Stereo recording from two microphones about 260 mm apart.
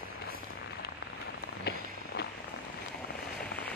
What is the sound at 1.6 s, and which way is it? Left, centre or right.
Walk, left.